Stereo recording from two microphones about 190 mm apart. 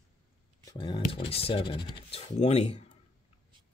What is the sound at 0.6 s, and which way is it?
Speech, 25° left (ahead or behind).